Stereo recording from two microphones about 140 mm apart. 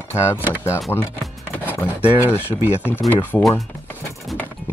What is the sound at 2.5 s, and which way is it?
Speech, 20° left (ahead or behind).